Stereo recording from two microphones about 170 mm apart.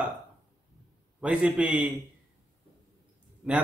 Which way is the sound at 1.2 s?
10° right (ahead or behind).